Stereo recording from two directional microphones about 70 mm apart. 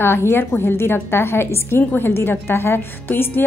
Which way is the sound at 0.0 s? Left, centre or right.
Left.